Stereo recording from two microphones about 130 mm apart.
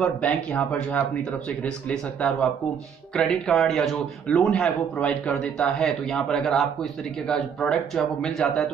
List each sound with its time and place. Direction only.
0.0 s speech: 10° left (ahead or behind)